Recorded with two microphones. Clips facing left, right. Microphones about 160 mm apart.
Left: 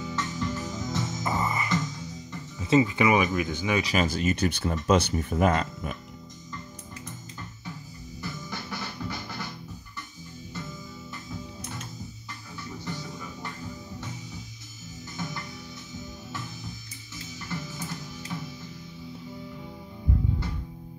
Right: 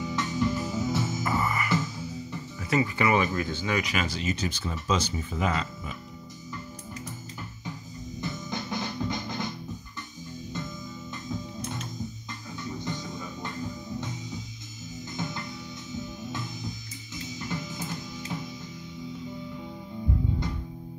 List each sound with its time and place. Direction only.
0.0 s music: 15° right (ahead or behind)
1.2 s music: 20° left (ahead or behind)
1.7 s music: 10° right (ahead or behind)
2.6 s speech: 20° left (ahead or behind)
3.8 s speech: 40° left (ahead or behind)
8.2 s music: 20° right (ahead or behind)
12.7 s music: 15° right (ahead or behind)
16.3 s music: 15° right (ahead or behind)